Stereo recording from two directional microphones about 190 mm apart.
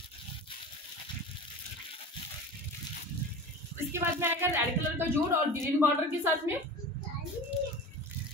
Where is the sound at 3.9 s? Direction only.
10° right (ahead or behind).